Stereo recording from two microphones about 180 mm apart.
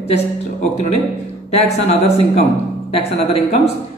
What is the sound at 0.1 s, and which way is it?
Speech, 35° left (ahead or behind).